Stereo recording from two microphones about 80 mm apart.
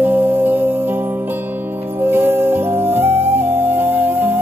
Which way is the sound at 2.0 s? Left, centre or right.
Right.